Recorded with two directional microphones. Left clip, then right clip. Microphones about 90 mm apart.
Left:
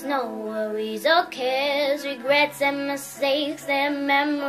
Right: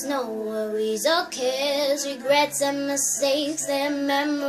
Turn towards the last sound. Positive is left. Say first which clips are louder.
# left 2 dB
turn(degrees=-35)  # may be behind; listen again after turning